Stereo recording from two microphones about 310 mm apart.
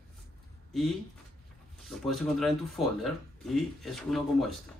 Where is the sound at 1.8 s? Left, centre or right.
Centre.